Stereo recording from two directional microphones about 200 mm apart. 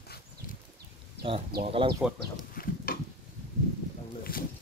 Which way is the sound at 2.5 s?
45° left (ahead or behind).